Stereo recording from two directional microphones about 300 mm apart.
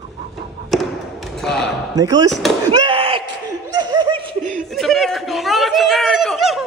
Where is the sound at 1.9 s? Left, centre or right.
Centre.